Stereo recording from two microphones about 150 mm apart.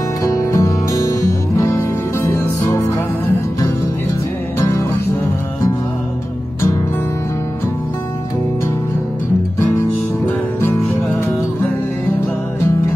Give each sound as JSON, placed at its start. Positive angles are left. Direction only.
{"t": 0.2, "sound": "music", "side_deg": 20}
{"t": 9.6, "sound": "music", "side_deg": 15}